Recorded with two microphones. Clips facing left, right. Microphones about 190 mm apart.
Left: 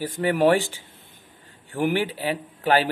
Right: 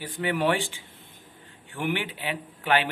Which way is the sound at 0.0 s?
40° left (ahead or behind).